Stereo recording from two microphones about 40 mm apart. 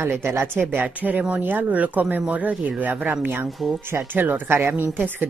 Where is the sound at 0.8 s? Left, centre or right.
Right.